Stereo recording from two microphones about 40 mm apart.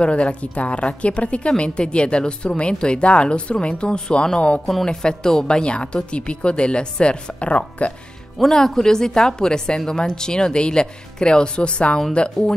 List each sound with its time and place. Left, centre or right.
0.0 s a woman's voice: left
8.4 s a woman's voice: centre; by 12.0 s left